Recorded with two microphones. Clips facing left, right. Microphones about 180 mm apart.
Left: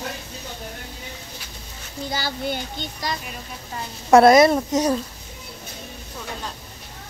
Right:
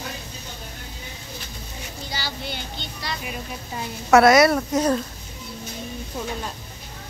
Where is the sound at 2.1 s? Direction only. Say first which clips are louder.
Left 6 dB; 50° left (ahead or behind).